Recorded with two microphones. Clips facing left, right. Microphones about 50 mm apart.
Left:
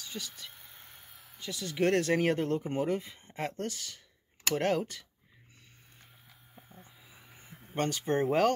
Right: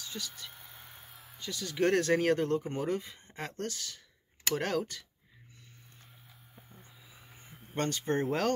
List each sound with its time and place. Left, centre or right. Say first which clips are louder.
1.4 s speech: even; centre
7.7 s speech: left 1 dB; centre